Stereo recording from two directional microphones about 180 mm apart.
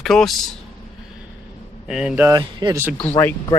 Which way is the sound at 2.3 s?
25° right (ahead or behind).